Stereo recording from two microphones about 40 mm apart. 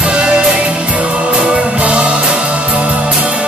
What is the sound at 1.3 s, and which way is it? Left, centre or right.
Music, right.